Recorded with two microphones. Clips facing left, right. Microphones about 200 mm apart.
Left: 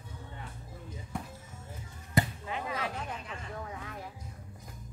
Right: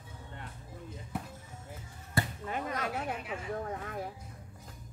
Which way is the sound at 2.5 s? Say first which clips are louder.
Right 1 dB; 45° right (ahead or behind).